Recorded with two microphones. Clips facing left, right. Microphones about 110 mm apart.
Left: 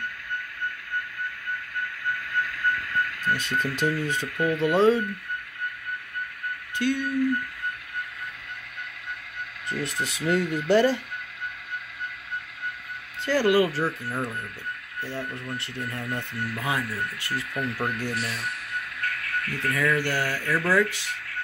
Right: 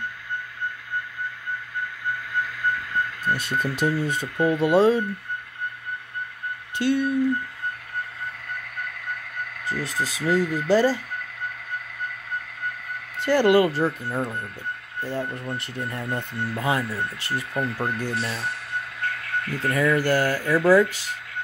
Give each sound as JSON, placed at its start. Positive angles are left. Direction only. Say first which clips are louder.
{"t": 2.3, "sound": "a sound", "louder": "right 1 dB", "side_deg": -15}
{"t": 4.4, "sound": "speech", "louder": "right 4 dB", "side_deg": -30}
{"t": 4.7, "sound": "speech", "louder": "right 2 dB", "side_deg": -10}
{"t": 6.8, "sound": "speech", "louder": "right 4 dB", "side_deg": -25}
{"t": 8.7, "sound": "a sound", "louder": "right 4 dB", "side_deg": -45}
{"t": 13.4, "sound": "speech", "louder": "right 3 dB", "side_deg": -25}
{"t": 20.0, "sound": "speech", "louder": "right 6 dB", "side_deg": -35}
{"t": 20.2, "sound": "speech", "louder": "right 7 dB", "side_deg": -20}